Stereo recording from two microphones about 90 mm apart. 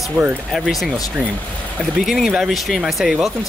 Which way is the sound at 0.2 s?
25° right (ahead or behind).